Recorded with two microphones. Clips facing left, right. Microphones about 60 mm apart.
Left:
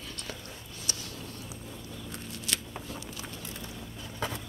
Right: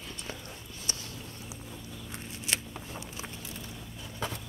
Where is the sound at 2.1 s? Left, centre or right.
Right.